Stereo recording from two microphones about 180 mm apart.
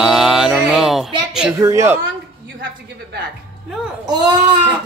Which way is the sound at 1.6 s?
15° right (ahead or behind).